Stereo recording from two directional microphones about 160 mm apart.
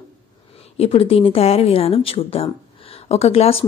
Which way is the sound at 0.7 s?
35° left (ahead or behind).